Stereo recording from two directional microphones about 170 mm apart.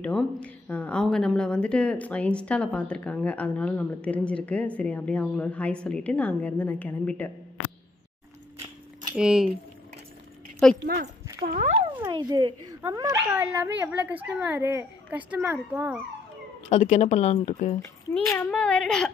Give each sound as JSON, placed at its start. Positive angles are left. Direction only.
{"t": 0.0, "sound": "speech", "side_deg": 5}
{"t": 9.1, "sound": "a woman's voice", "side_deg": -5}
{"t": 10.6, "sound": "a woman's voice", "side_deg": 5}
{"t": 11.4, "sound": "speech", "side_deg": -55}
{"t": 12.1, "sound": "a woman's voice", "side_deg": -25}
{"t": 16.6, "sound": "speech", "side_deg": 45}
{"t": 18.2, "sound": "speech", "side_deg": 20}
{"t": 18.5, "sound": "a woman's voice", "side_deg": 5}